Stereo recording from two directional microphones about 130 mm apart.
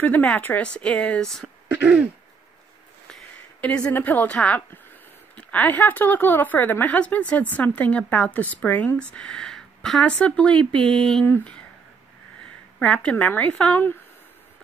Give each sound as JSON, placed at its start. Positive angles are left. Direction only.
{"t": 0.0, "sound": "speech", "side_deg": 10}
{"t": 1.7, "sound": "throat clearing", "side_deg": -10}
{"t": 3.6, "sound": "speech", "side_deg": 10}
{"t": 11.2, "sound": "speech", "side_deg": 15}
{"t": 12.7, "sound": "speech", "side_deg": 10}